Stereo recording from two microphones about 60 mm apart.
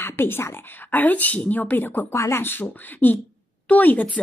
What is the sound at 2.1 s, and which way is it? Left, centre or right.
Speech, left.